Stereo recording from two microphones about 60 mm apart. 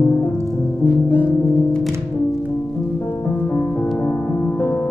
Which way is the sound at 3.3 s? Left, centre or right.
Left.